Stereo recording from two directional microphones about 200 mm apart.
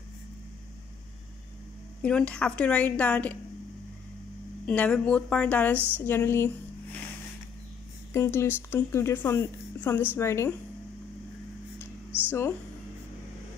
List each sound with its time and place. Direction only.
2.0 s a woman's voice: 5° left (ahead or behind)
4.6 s a woman's voice: 5° left (ahead or behind)
8.1 s a woman's voice: 15° left (ahead or behind)
12.3 s a woman's voice: 10° left (ahead or behind)